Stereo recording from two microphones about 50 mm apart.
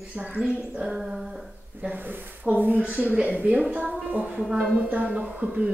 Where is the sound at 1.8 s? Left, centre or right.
Right.